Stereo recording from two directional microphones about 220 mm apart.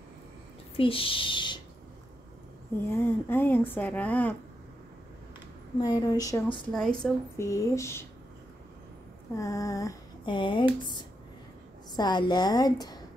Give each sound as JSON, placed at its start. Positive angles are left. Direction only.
{"t": 0.7, "sound": "speech", "side_deg": 25}
{"t": 2.9, "sound": "a woman's voice", "side_deg": 10}
{"t": 5.8, "sound": "a woman's voice", "side_deg": 15}
{"t": 6.7, "sound": "a woman's voice", "side_deg": 5}
{"t": 9.3, "sound": "speech", "side_deg": 15}
{"t": 12.0, "sound": "a woman's voice", "side_deg": 20}